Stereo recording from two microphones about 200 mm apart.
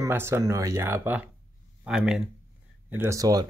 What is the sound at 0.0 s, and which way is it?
Speech, 10° right (ahead or behind).